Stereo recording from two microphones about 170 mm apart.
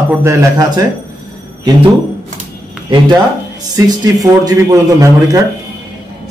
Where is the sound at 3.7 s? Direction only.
20° right (ahead or behind).